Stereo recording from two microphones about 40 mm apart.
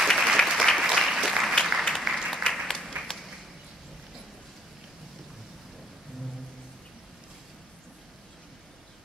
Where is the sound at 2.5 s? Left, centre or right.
Centre.